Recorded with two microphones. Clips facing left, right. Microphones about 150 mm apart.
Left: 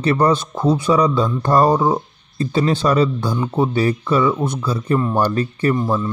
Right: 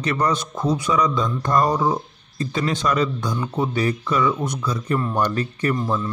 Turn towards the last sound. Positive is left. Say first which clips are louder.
# left 4 dB
turn(degrees=30)  # may be behind; listen again after turning